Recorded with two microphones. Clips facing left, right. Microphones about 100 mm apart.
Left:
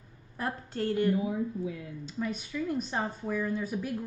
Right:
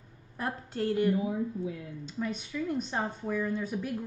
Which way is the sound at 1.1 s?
25° right (ahead or behind).